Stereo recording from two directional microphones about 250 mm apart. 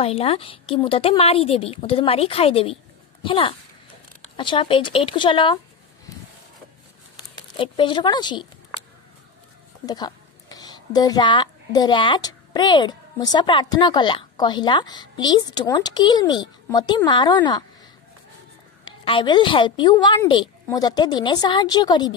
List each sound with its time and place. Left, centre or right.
0.0 s a woman's voice: left
7.2 s speech: centre
9.8 s a woman's voice: centre
19.0 s a woman's voice: centre